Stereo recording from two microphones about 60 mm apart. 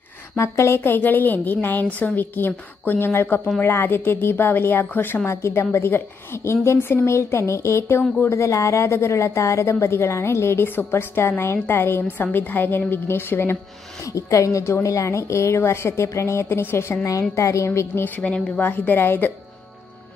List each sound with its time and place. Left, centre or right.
0.4 s a woman's voice: left
0.7 s a woman's voice: left
14.0 s a woman's voice: left
14.6 s a woman's voice: left
17.0 s a woman's voice: left
18.0 s a woman's voice: left